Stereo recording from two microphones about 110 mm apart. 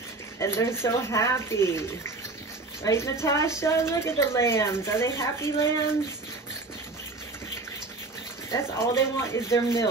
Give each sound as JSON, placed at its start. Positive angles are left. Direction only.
{"t": 0.4, "sound": "a woman's voice", "side_deg": 25}
{"t": 8.5, "sound": "a woman's voice", "side_deg": 25}